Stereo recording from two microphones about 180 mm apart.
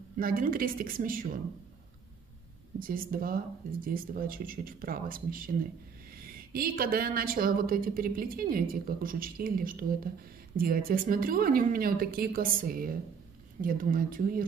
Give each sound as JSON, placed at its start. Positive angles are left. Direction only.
{"t": 0.2, "sound": "a woman's voice", "side_deg": -55}
{"t": 2.8, "sound": "a woman's voice", "side_deg": -50}